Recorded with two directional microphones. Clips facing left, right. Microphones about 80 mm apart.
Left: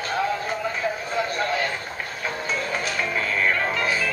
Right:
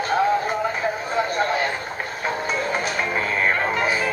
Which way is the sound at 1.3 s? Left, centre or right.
Right.